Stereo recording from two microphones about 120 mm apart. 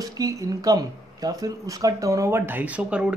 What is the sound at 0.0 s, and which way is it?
Speech, 30° right (ahead or behind).